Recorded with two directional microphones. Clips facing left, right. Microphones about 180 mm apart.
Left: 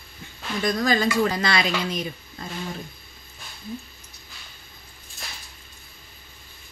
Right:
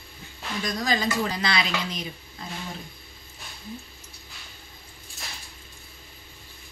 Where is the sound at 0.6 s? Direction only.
55° left (ahead or behind).